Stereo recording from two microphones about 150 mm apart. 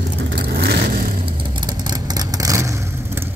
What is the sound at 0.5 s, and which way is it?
Vehicle, 90° right.